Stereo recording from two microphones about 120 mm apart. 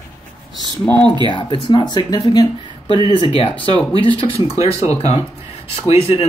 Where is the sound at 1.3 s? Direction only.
40° left (ahead or behind).